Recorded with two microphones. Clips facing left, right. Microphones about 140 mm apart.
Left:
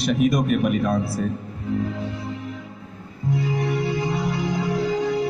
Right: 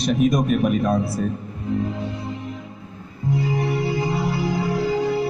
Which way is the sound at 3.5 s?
30° right (ahead or behind).